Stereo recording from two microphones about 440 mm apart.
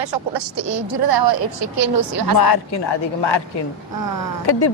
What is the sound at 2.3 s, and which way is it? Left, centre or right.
A man's voice, left.